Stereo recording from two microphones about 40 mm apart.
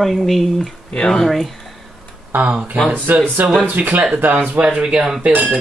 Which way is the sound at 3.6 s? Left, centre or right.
Right.